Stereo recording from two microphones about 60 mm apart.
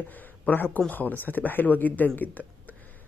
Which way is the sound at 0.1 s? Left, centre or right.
Left.